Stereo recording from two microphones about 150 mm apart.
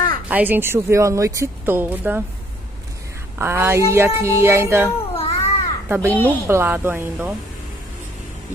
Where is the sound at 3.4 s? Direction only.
15° right (ahead or behind).